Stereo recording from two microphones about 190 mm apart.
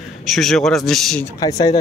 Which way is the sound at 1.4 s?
20° left (ahead or behind).